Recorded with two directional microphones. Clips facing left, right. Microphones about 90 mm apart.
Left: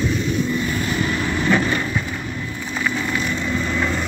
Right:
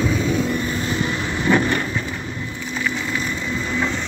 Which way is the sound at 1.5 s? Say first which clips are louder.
Right 2 dB; 15° right (ahead or behind).